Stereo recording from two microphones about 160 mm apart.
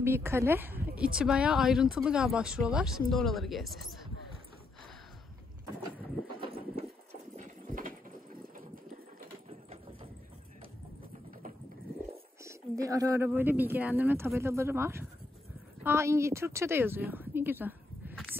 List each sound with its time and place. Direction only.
0.0 s a woman's voice: 15° right (ahead or behind)
6.4 s clip-clop: 35° right (ahead or behind)
7.3 s horse: 60° right (ahead or behind)
12.4 s a woman's voice: 20° right (ahead or behind)